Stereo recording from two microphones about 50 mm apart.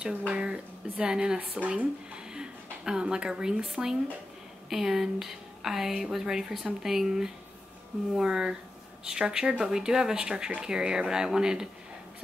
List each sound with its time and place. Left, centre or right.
0.3 s speech: right
1.4 s speech: right
2.1 s a woman's voice: centre